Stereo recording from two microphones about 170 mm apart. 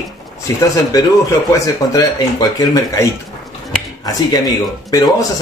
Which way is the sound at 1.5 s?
20° left (ahead or behind).